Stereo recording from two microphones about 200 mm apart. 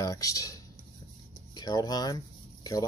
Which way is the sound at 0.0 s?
15° left (ahead or behind).